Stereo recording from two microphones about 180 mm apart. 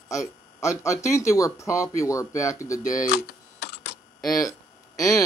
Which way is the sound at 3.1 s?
65° left (ahead or behind).